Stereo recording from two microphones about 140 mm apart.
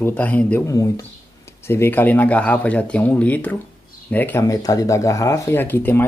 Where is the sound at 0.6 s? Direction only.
25° left (ahead or behind).